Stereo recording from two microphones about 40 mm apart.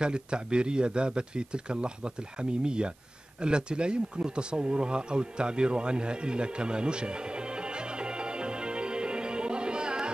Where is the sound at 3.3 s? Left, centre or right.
Right.